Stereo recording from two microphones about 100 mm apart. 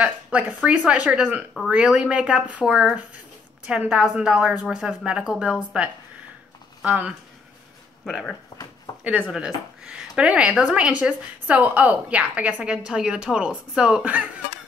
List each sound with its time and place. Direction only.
0.0 s speech: 15° right (ahead or behind)
6.8 s speech: 10° right (ahead or behind)
8.0 s speech: centre (ahead or behind)
8.9 s a sound: 40° left (ahead or behind)
9.3 s speech: 10° right (ahead or behind)